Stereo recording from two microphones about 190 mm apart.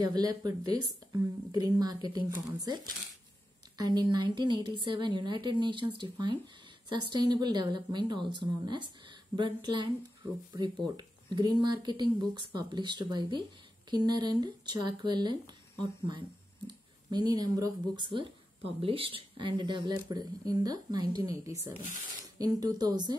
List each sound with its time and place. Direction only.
0.0 s a woman's voice: 20° right (ahead or behind)
11.0 s a woman's voice: 20° right (ahead or behind)